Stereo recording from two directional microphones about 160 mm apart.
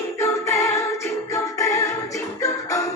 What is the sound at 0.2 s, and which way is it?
Music, 15° left (ahead or behind).